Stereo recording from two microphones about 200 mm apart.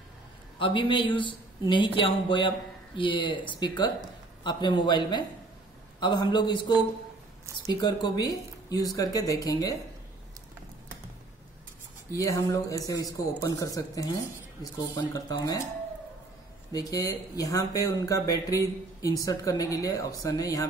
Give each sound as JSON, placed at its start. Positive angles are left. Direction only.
{"t": 0.6, "sound": "speech", "side_deg": 25}
{"t": 12.1, "sound": "speech", "side_deg": 15}
{"t": 16.7, "sound": "speech", "side_deg": 15}